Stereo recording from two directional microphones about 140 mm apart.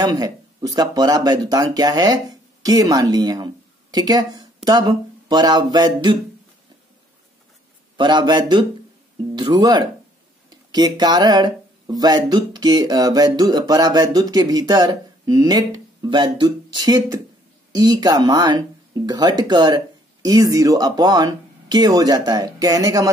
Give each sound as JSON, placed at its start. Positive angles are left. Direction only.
{"t": 0.0, "sound": "speech", "side_deg": -25}
{"t": 8.0, "sound": "speech", "side_deg": -35}